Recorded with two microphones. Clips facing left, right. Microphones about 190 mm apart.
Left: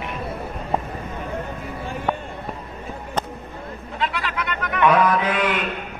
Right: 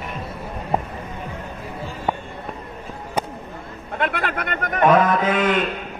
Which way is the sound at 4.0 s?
55° right (ahead or behind).